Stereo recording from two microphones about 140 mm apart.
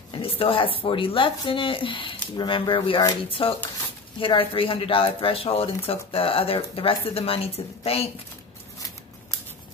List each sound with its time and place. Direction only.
0.1 s speech: 40° left (ahead or behind)